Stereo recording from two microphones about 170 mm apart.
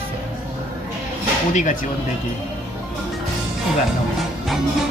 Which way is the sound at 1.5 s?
50° left (ahead or behind).